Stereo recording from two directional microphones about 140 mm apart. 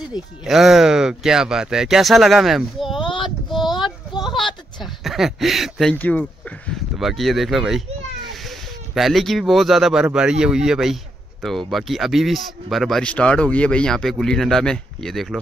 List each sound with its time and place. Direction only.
0.1 s speech: centre (ahead or behind)
3.0 s female singing: 35° left (ahead or behind)
3.3 s a sound: centre (ahead or behind)
4.4 s a sound: 35° left (ahead or behind)
4.8 s speech: centre (ahead or behind)
5.9 s speech: 10° left (ahead or behind)
6.7 s speech: centre (ahead or behind)